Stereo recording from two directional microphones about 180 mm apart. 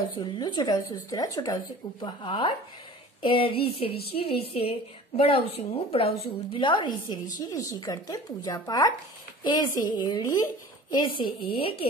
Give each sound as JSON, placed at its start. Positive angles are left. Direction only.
{"t": 0.1, "sound": "a woman's voice", "side_deg": 25}
{"t": 3.2, "sound": "a sound", "side_deg": 30}
{"t": 5.9, "sound": "a woman's voice", "side_deg": 35}